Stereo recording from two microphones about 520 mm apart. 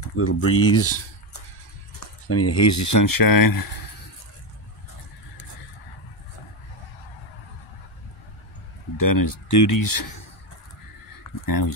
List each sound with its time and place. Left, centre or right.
0.1 s speech: left
2.2 s speech: left
8.9 s speech: left
11.4 s speech: left